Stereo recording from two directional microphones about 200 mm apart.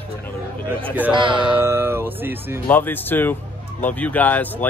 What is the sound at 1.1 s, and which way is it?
Speech, 25° right (ahead or behind).